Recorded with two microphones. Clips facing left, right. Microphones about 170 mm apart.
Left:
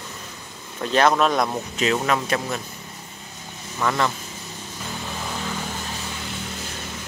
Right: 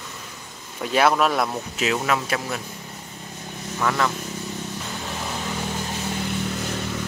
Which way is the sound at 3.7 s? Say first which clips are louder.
Even; centre (ahead or behind).